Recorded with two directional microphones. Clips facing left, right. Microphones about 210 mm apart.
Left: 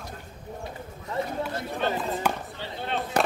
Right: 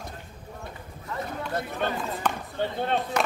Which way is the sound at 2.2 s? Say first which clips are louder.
Even; 10° left (ahead or behind).